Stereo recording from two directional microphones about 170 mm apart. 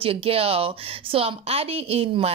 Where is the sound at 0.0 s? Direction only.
35° right (ahead or behind).